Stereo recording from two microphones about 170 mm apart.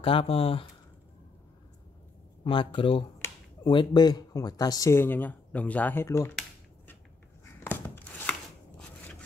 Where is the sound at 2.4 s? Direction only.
30° left (ahead or behind).